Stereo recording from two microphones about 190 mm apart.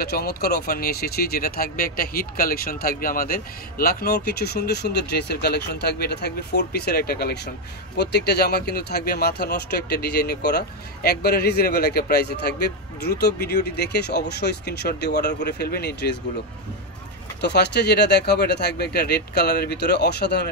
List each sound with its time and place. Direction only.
0.0 s speech: 55° left (ahead or behind)
17.4 s speech: 60° left (ahead or behind)